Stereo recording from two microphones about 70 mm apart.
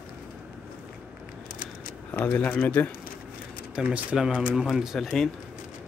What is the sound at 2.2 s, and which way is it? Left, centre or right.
Speech, left.